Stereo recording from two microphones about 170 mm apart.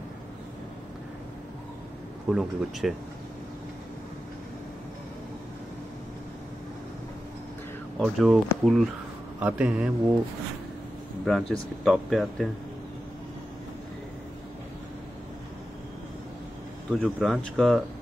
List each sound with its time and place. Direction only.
2.2 s speech: 5° right (ahead or behind)
8.0 s a man's voice: centre (ahead or behind)
11.2 s speech: centre (ahead or behind)
16.9 s speech: centre (ahead or behind)